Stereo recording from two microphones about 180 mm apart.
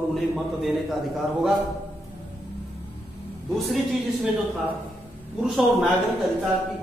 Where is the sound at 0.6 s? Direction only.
Centre (ahead or behind).